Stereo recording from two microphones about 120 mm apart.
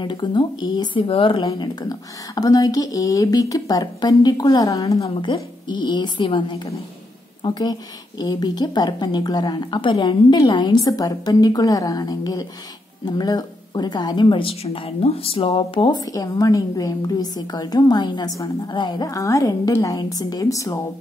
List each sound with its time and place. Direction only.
0.0 s a woman's voice: 40° left (ahead or behind)
1.4 s a woman's voice: 35° left (ahead or behind)
5.2 s a woman's voice: 40° left (ahead or behind)
16.0 s a woman's voice: 30° left (ahead or behind)